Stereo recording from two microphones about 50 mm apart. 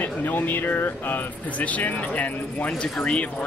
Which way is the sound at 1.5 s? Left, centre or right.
Left.